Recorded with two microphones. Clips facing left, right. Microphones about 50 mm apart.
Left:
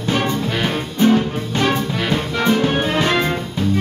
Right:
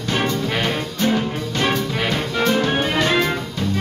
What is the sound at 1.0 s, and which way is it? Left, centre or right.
Music, left.